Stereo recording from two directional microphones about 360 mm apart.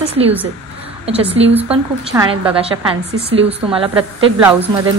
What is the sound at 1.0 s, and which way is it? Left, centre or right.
Speech, centre.